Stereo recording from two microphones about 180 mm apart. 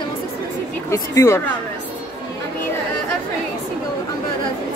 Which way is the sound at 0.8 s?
15° left (ahead or behind).